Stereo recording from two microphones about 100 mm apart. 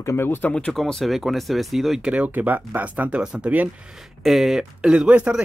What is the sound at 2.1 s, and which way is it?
Speech, 15° right (ahead or behind).